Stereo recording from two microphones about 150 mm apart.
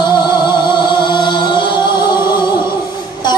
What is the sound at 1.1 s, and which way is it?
Music, 30° left (ahead or behind).